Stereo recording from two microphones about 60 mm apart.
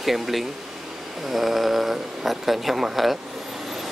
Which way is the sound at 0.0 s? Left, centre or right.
Centre.